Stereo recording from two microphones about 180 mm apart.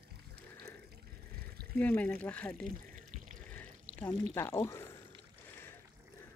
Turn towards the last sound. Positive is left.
turn(degrees=10)  # may be behind; listen again after turning